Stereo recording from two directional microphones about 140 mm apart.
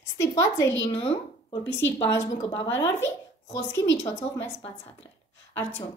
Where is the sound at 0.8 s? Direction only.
40° left (ahead or behind).